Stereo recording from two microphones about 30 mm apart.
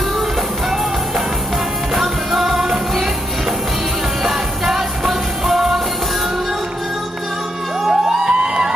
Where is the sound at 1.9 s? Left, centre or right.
Centre.